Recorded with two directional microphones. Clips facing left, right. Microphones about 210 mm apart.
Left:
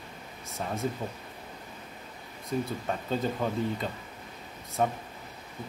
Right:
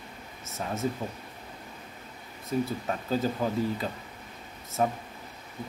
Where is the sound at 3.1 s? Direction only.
5° right (ahead or behind).